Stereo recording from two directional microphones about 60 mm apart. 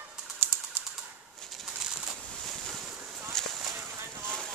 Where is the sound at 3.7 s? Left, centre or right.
Right.